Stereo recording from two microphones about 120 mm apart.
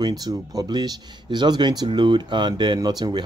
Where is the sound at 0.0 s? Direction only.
35° right (ahead or behind).